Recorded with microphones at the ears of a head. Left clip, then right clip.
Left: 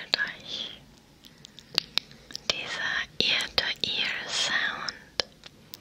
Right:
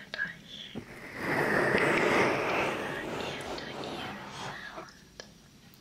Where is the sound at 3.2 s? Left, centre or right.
Left.